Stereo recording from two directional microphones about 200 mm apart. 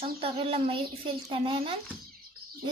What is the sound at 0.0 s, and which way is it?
Speech, 30° right (ahead or behind).